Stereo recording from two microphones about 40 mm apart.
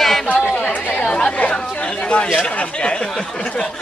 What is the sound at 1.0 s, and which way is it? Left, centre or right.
Chatter, left.